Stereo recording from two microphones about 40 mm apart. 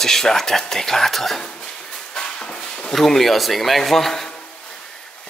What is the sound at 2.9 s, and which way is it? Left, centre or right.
Speech, centre.